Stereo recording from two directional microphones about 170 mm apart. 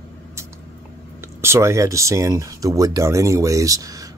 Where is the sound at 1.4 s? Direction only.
15° right (ahead or behind).